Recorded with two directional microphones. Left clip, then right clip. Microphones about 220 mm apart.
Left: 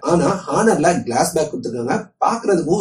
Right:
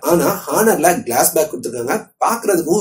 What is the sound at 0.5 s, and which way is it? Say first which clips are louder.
Speech: right 2 dB; 40° right (ahead or behind).